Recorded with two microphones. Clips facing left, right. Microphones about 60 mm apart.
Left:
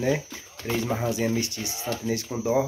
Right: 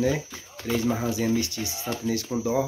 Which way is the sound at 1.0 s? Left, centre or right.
Left.